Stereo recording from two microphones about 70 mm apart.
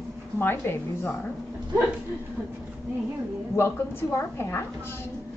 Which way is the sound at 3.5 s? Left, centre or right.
Left.